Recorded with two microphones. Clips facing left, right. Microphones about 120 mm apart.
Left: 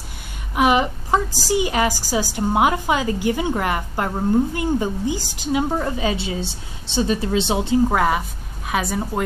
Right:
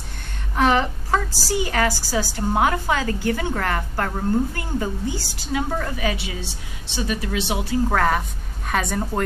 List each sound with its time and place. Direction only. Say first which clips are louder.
0.6 s a woman's voice: left 2 dB; 15° left (ahead or behind)
7.9 s a woman's voice: left 1 dB; 10° left (ahead or behind)